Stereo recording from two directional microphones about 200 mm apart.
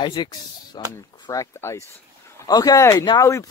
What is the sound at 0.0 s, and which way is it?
Speech, 20° left (ahead or behind).